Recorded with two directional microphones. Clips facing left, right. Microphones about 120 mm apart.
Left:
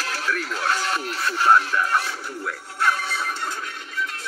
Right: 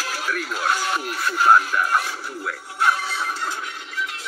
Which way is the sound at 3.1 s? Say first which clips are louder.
Right 1 dB; 10° right (ahead or behind).